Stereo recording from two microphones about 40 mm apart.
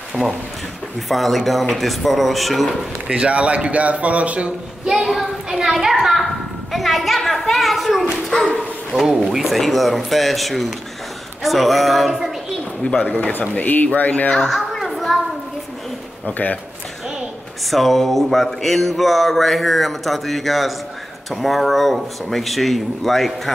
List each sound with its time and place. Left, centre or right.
1.0 s mantra: centre
3.1 s speech: right
4.8 s a child's voice: centre
6.2 s mantra: centre
9.3 s a child's voice: centre
9.6 s mantra: centre
12.8 s speech: left
13.2 s speech: left
14.5 s children playing: centre
17.6 s mantra: centre